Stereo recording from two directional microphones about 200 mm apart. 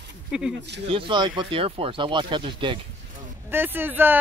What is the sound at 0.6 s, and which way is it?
Speech, 60° right (ahead or behind).